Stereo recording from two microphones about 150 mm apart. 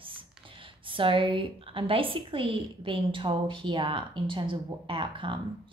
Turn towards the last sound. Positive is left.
turn(degrees=-35)  # may be behind; listen again after turning